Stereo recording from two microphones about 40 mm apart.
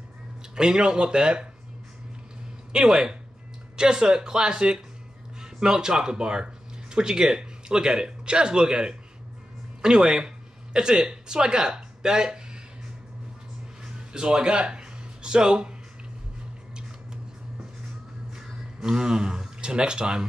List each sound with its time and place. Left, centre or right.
0.6 s speech: right
2.7 s speech: centre
14.1 s speech: right
18.9 s speech: centre